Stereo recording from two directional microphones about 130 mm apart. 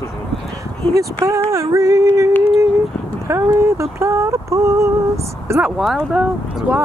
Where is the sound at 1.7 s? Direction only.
25° right (ahead or behind).